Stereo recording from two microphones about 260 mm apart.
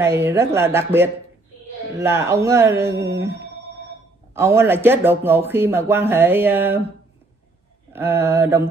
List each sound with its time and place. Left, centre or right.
0.0 s speech: centre
4.3 s speech: centre
7.9 s speech: centre